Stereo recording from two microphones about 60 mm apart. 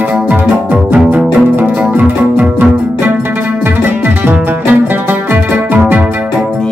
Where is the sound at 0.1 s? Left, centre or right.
Right.